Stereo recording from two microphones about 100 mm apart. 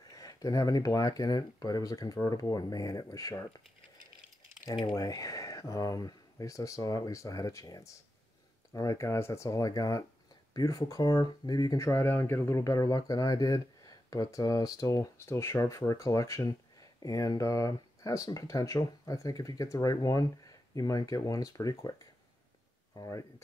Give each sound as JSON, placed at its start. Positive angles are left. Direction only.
{"t": 0.0, "sound": "speech", "side_deg": 40}
{"t": 4.9, "sound": "speech", "side_deg": 35}
{"t": 15.1, "sound": "speech", "side_deg": 25}